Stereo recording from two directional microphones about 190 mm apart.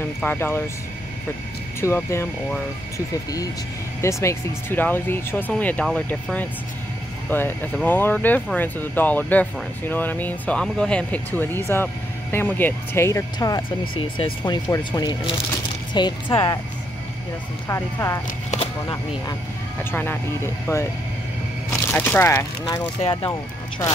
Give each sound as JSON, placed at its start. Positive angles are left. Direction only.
{"t": 0.2, "sound": "speech", "side_deg": 10}
{"t": 1.8, "sound": "speech", "side_deg": 15}
{"t": 4.0, "sound": "speech", "side_deg": 15}
{"t": 17.6, "sound": "speech", "side_deg": 15}
{"t": 18.5, "sound": "speech", "side_deg": 30}
{"t": 19.8, "sound": "speech", "side_deg": 10}
{"t": 21.8, "sound": "speech", "side_deg": 10}